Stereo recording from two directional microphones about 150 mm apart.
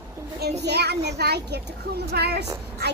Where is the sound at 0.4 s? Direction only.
90° right.